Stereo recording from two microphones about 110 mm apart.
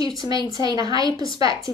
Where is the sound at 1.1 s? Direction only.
50° left (ahead or behind).